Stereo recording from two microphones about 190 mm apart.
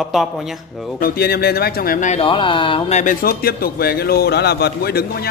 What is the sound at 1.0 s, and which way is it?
Speech, 55° left (ahead or behind).